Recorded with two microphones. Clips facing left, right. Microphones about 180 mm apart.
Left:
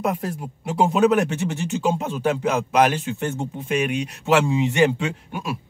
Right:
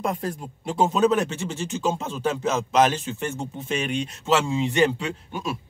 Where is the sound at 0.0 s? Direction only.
10° left (ahead or behind).